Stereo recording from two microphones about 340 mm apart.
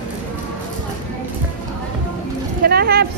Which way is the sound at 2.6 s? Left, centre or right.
Right.